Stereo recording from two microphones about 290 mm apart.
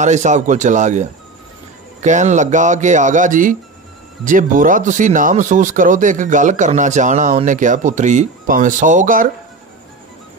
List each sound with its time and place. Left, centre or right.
0.0 s speech: right